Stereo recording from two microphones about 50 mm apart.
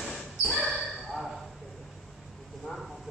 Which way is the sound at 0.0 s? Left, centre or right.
Centre.